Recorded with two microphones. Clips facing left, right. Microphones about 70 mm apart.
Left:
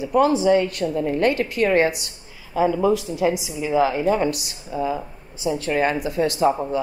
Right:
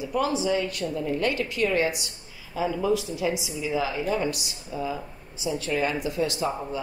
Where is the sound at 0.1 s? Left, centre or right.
Left.